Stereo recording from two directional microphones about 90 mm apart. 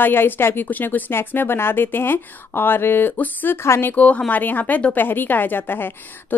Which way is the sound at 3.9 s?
15° left (ahead or behind).